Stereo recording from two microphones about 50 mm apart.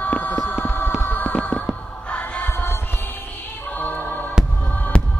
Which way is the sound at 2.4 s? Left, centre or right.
Left.